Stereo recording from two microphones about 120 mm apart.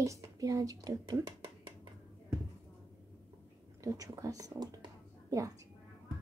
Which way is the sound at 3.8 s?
30° right (ahead or behind).